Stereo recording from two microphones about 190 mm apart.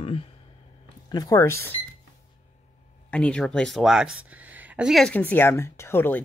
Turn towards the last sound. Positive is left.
turn(degrees=10)  # may be behind; listen again after turning